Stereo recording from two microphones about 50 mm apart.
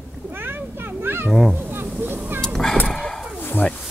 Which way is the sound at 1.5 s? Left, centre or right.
Right.